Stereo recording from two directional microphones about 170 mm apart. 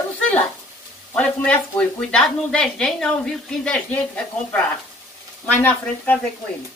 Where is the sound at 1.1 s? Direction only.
10° left (ahead or behind).